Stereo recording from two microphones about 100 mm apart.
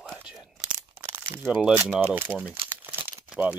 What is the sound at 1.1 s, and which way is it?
Crumpling, 20° right (ahead or behind).